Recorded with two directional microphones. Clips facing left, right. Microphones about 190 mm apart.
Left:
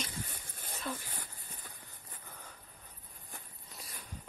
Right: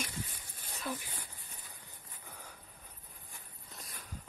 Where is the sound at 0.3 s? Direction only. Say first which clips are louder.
Left 3 dB; 55° left (ahead or behind).